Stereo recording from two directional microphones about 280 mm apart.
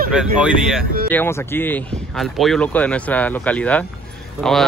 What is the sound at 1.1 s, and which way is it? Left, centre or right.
Speech, centre.